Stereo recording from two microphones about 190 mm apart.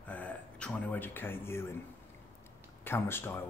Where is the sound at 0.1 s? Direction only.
5° left (ahead or behind).